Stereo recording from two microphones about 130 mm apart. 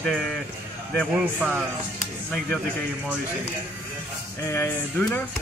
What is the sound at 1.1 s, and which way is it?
Speech, 10° right (ahead or behind).